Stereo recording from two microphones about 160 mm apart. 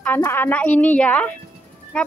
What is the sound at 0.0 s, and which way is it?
A woman's voice, 15° left (ahead or behind).